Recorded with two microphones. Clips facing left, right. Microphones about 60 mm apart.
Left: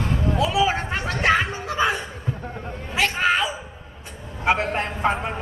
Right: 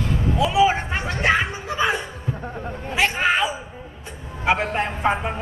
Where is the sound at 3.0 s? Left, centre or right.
Right.